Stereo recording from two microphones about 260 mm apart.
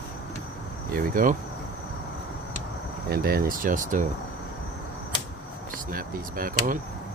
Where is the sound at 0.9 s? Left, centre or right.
Right.